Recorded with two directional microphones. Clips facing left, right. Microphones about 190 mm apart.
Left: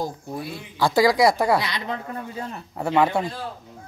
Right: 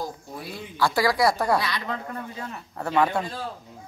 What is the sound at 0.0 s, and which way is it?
Speech, 20° left (ahead or behind).